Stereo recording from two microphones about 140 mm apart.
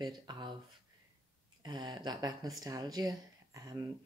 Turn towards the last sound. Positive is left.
turn(degrees=-25)  # may be behind; listen again after turning